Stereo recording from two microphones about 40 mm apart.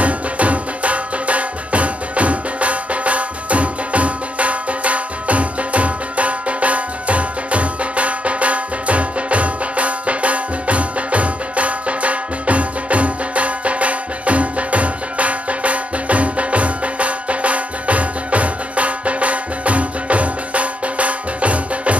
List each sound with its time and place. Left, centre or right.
0.0 s music: right